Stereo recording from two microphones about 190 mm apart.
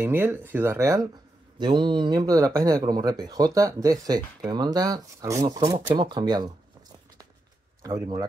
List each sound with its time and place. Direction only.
0.0 s speech: 10° right (ahead or behind)
7.8 s speech: 20° right (ahead or behind)